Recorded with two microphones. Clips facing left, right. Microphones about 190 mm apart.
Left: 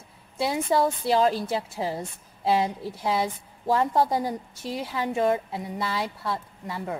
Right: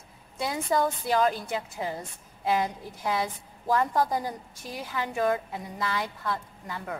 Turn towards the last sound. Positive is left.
turn(degrees=30)  # may be behind; listen again after turning